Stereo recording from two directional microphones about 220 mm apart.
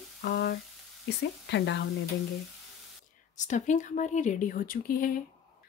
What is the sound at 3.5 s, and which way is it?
Speech, 35° left (ahead or behind).